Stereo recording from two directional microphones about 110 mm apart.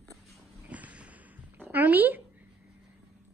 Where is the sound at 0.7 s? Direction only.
15° right (ahead or behind).